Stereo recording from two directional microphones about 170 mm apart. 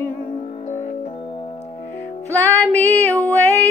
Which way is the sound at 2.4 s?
10° left (ahead or behind).